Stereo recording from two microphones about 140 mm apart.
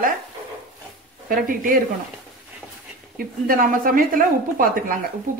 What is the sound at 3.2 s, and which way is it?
A woman's voice, 85° right.